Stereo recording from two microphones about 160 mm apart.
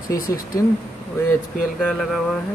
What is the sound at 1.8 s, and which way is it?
Speech, centre (ahead or behind).